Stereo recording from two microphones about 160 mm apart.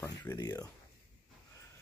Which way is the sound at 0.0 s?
15° left (ahead or behind).